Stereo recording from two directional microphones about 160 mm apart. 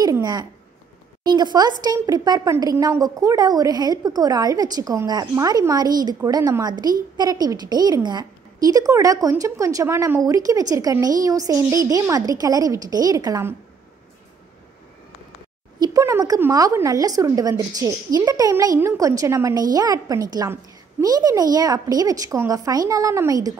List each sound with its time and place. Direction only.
0.0 s a sound: 25° right (ahead or behind)
1.2 s a woman's voice: 25° right (ahead or behind)
15.8 s a woman's voice: 20° right (ahead or behind)